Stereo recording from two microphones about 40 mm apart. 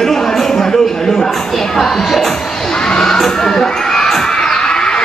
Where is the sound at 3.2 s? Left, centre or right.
Centre.